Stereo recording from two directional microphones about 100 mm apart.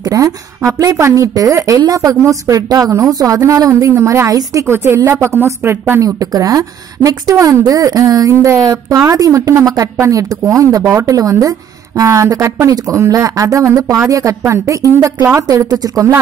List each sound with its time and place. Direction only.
0.0 s a woman's voice: 35° right (ahead or behind)